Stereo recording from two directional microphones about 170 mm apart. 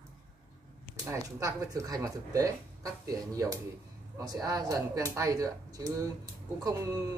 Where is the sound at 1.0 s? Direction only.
20° right (ahead or behind).